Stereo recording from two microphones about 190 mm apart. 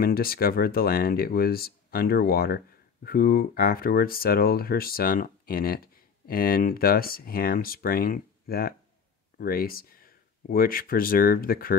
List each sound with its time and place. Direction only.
0.0 s speech: 50° left (ahead or behind)